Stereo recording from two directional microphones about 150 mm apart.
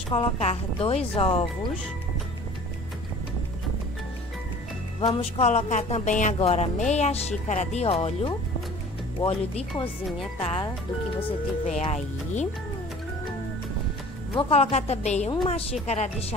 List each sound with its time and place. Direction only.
0.1 s speech: 40° left (ahead or behind)
5.2 s speech: 45° left (ahead or behind)
14.3 s speech: 45° left (ahead or behind)